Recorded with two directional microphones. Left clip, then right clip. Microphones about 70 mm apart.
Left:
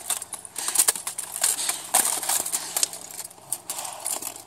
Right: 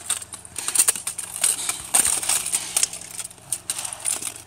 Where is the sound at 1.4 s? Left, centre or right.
Left.